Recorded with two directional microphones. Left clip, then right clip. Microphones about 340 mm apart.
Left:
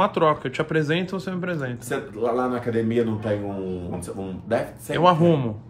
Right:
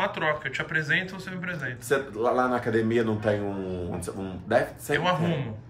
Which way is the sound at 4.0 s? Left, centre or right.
Centre.